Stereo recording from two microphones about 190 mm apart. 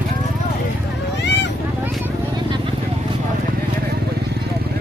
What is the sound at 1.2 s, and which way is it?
Vehicle, 65° left (ahead or behind).